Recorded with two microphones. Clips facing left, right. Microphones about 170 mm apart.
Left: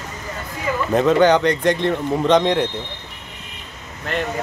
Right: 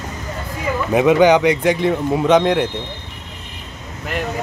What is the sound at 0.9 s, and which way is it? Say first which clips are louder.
Speech: right 2 dB; 10° right (ahead or behind).